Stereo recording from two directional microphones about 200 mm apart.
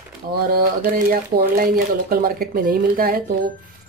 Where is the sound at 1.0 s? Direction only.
50° right (ahead or behind).